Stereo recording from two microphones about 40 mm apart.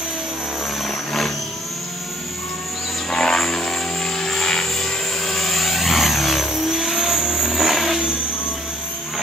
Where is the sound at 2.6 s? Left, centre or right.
Centre.